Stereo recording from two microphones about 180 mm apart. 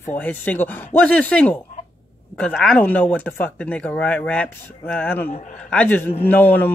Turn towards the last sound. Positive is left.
turn(degrees=10)  # may be behind; listen again after turning